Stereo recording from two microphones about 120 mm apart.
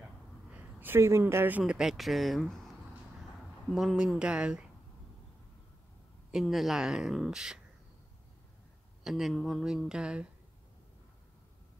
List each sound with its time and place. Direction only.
0.5 s a sound: 15° right (ahead or behind)
1.6 s a woman's voice: 5° right (ahead or behind)
3.7 s speech: 5° right (ahead or behind)
6.3 s a woman's voice: centre (ahead or behind)
9.0 s a woman's voice: centre (ahead or behind)